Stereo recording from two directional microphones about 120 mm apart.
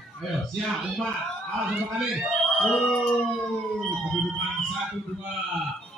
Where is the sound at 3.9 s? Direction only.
5° right (ahead or behind).